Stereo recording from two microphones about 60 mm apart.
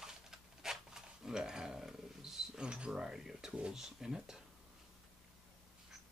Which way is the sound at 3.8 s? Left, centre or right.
Centre.